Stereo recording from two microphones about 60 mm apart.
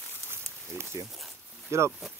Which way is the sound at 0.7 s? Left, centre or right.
Right.